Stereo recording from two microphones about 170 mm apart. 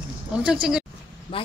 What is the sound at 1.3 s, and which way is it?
Speech, 30° left (ahead or behind).